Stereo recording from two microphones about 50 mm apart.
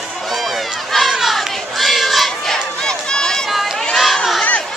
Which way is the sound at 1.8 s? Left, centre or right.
Centre.